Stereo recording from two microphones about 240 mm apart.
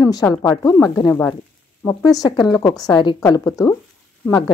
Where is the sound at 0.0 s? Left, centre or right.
Centre.